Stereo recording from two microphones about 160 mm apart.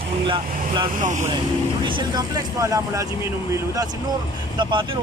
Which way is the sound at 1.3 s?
30° right (ahead or behind).